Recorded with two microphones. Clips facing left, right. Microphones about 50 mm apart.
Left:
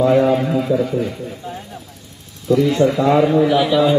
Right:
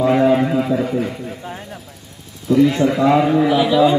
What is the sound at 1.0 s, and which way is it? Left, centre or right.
Speech, right.